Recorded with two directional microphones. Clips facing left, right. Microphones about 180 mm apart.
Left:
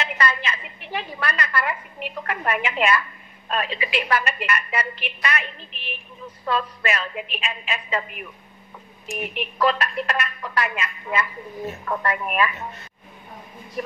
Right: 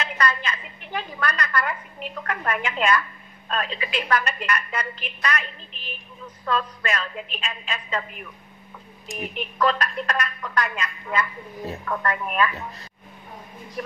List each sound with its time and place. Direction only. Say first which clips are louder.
0.0 s a sound: even; 5° left (ahead or behind)
3.4 s a woman's voice: left 2 dB; 5° left (ahead or behind)
9.0 s speech: left 2 dB; 35° right (ahead or behind)
9.4 s a woman's voice: left 1 dB; 5° left (ahead or behind)
13.8 s a woman's voice: left 2 dB; 5° left (ahead or behind)